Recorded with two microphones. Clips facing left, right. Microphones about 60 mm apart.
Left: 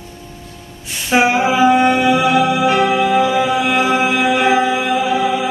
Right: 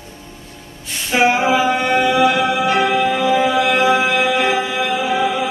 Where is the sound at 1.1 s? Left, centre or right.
Centre.